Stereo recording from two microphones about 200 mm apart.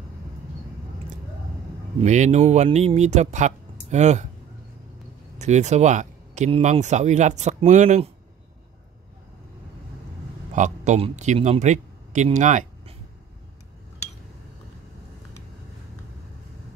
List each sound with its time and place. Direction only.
2.0 s speech: 35° right (ahead or behind)
5.4 s speech: 35° right (ahead or behind)
10.5 s speech: 35° right (ahead or behind)